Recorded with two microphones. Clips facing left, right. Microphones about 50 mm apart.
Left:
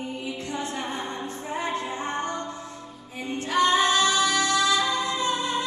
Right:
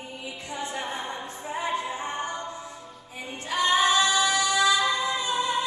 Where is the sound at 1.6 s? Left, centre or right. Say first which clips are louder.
Right 1 dB; centre.